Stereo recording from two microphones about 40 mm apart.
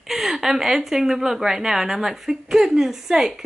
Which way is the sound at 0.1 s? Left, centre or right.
Centre.